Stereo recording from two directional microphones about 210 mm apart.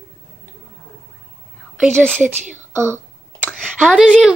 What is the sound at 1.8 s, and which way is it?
Speech, 5° left (ahead or behind).